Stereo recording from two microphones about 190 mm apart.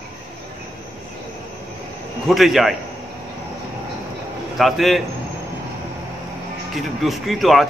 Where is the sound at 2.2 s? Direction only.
Centre (ahead or behind).